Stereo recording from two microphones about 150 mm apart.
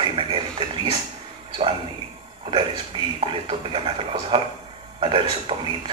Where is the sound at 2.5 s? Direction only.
35° right (ahead or behind).